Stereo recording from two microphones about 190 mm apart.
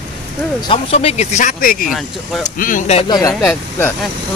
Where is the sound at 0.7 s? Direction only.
30° left (ahead or behind).